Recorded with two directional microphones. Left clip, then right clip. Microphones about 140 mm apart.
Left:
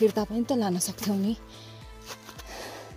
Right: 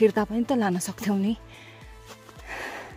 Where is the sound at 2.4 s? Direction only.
20° right (ahead or behind).